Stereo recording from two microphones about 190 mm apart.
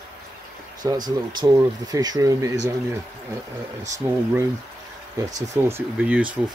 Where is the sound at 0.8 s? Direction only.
20° right (ahead or behind).